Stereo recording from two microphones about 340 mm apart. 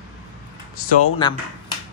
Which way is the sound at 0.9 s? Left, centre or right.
Centre.